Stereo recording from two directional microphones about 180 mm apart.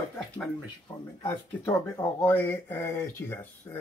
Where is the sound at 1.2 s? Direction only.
20° left (ahead or behind).